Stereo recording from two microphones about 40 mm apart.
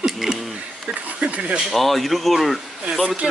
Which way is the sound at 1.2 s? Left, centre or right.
Right.